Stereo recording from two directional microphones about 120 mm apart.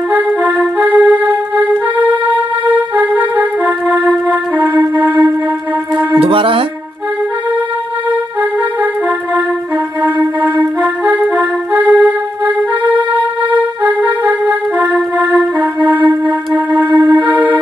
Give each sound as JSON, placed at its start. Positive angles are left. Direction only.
{"t": 0.7, "sound": "music", "side_deg": -10}
{"t": 2.7, "sound": "music", "side_deg": -15}
{"t": 3.9, "sound": "music", "side_deg": 10}
{"t": 6.1, "sound": "music", "side_deg": -50}
{"t": 11.7, "sound": "music", "side_deg": -15}
{"t": 14.9, "sound": "music", "side_deg": 10}
{"t": 16.9, "sound": "music", "side_deg": -40}